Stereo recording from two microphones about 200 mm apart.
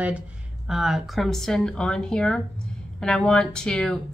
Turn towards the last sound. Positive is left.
turn(degrees=5)  # may be behind; listen again after turning